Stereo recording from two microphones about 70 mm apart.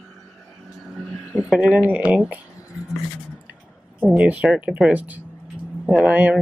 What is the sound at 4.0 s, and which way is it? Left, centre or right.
Speech, centre.